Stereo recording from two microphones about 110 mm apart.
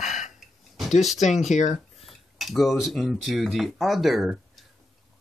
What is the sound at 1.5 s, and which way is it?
Speech, 90° left.